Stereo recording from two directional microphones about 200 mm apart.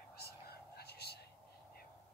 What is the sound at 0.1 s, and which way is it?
Whispering, 50° left (ahead or behind).